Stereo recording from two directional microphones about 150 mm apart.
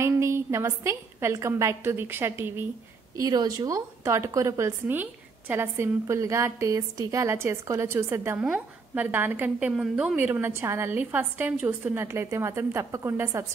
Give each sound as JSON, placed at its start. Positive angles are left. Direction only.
{"t": 0.0, "sound": "a woman's voice", "side_deg": -20}
{"t": 3.2, "sound": "a woman's voice", "side_deg": -25}